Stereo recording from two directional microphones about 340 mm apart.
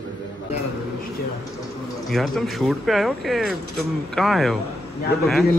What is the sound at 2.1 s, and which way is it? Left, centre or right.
Speech, centre.